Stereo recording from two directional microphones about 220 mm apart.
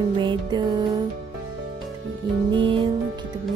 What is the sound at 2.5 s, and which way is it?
Speech, 20° right (ahead or behind).